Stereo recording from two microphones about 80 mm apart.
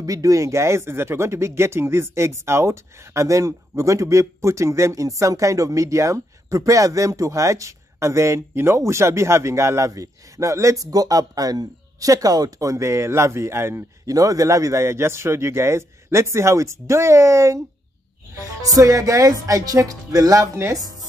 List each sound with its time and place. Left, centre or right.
0.0 s speech: right
14.0 s speech: right
18.6 s speech: right